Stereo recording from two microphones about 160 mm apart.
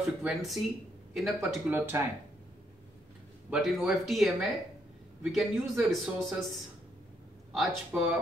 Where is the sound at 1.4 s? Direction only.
15° right (ahead or behind).